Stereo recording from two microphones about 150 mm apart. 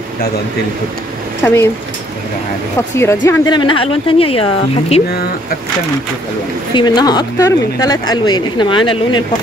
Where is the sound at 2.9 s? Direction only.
15° left (ahead or behind).